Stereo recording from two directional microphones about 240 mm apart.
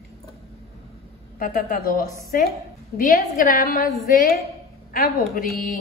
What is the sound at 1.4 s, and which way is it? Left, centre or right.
A woman's voice, left.